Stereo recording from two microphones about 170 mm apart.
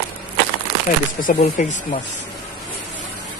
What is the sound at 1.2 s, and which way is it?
Speech, 50° left (ahead or behind).